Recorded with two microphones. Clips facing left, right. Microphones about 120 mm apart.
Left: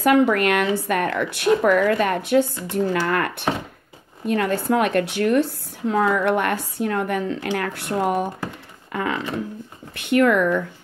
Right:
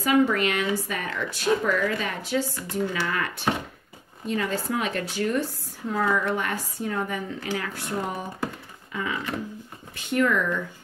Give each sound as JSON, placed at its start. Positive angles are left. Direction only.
{"t": 0.0, "sound": "speech", "side_deg": 60}